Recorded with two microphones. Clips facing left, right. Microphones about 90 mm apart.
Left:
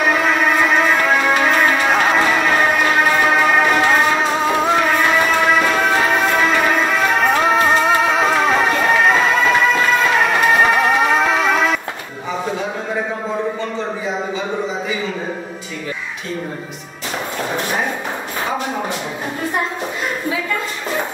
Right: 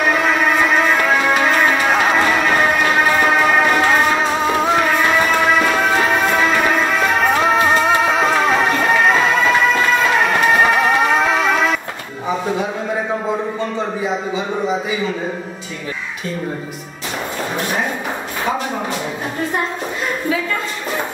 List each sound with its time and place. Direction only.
0.0 s music: centre (ahead or behind)